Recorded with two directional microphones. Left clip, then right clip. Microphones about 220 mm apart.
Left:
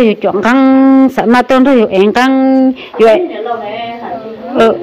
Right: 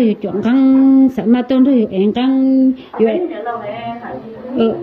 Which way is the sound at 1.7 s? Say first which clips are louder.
Left 7 dB; 30° left (ahead or behind).